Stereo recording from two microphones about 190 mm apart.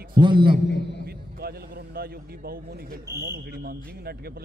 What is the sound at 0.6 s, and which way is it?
Speech, 65° left (ahead or behind).